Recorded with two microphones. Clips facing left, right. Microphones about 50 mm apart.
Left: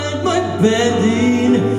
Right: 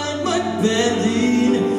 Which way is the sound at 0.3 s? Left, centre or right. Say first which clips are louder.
Left 5 dB; left.